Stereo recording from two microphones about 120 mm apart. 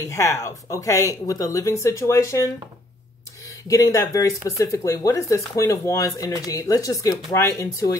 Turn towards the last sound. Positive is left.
turn(degrees=25)  # may be behind; listen again after turning